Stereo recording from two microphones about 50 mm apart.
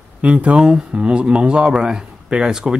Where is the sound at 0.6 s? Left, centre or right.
Centre.